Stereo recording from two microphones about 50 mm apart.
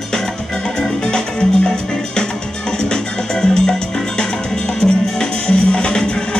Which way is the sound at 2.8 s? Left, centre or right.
Centre.